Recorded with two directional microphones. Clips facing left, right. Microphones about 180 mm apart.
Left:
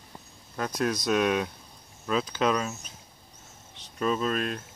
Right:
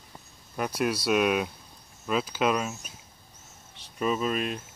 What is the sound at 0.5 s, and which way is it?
Speech, 10° right (ahead or behind).